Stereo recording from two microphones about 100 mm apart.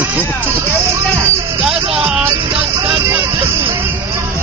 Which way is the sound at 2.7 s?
35° right (ahead or behind).